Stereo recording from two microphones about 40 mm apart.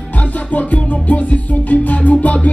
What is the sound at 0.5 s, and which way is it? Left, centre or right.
Music, left.